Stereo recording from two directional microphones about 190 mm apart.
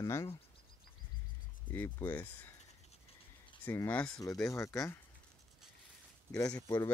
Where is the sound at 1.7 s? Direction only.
10° left (ahead or behind).